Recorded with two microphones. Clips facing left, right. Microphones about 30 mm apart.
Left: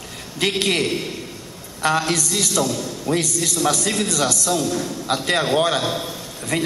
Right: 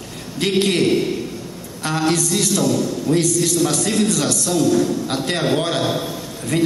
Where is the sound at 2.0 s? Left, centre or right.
Left.